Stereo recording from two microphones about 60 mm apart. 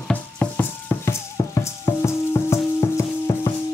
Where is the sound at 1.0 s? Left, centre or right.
Left.